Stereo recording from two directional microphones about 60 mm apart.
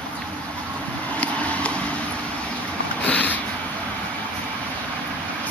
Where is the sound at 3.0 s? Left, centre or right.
Left.